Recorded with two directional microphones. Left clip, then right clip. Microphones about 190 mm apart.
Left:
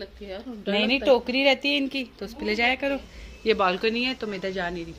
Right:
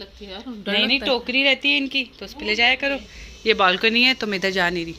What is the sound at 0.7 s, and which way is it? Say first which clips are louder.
A woman's voice: right 1 dB; 25° left (ahead or behind).